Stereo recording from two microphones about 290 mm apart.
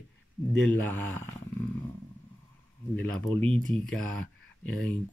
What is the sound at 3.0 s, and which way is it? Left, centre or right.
Speech, centre.